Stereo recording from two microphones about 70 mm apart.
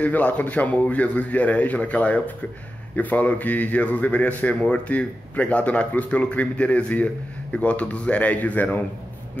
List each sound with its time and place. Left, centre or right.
0.0 s speech: left